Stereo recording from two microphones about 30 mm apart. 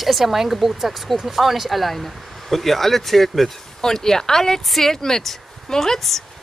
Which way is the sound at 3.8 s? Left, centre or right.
Centre.